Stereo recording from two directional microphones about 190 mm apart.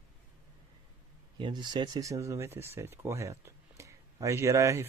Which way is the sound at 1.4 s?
25° right (ahead or behind).